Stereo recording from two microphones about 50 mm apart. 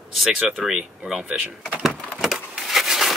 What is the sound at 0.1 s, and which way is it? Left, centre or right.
Speech, centre.